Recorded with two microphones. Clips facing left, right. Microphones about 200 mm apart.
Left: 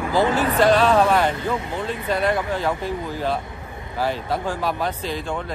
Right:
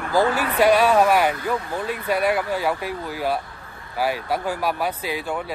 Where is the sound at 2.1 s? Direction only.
10° right (ahead or behind).